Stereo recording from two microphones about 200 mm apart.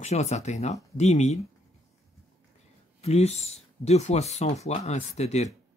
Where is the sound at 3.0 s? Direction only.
30° left (ahead or behind).